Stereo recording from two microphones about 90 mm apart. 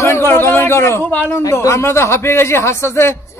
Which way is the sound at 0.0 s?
30° left (ahead or behind).